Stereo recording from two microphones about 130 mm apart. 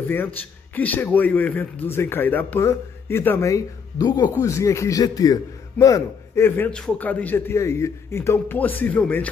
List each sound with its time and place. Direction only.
0.7 s a man's voice: 15° left (ahead or behind)